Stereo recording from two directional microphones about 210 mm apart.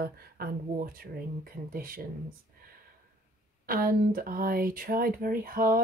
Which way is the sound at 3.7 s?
40° right (ahead or behind).